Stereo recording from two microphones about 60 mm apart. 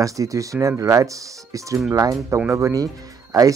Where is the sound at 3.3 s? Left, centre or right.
Right.